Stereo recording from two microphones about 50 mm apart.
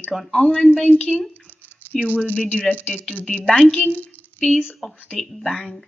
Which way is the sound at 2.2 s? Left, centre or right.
Left.